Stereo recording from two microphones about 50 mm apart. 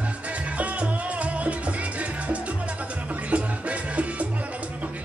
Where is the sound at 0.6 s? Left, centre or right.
Right.